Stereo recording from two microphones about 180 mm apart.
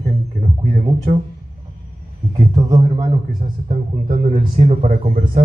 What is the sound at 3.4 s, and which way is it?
A man's voice, 45° right (ahead or behind).